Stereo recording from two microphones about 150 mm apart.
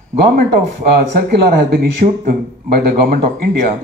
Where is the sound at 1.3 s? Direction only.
90° right.